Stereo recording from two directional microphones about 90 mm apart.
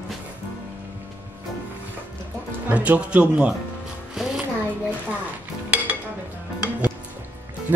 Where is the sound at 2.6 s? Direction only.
15° right (ahead or behind).